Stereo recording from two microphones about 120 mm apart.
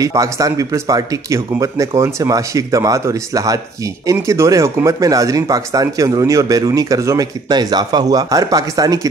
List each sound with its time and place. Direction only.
0.0 s speech: 25° right (ahead or behind)